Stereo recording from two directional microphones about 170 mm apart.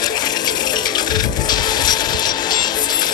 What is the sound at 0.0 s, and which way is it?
Music, 25° left (ahead or behind).